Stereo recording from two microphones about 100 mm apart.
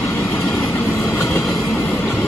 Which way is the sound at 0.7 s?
25° left (ahead or behind).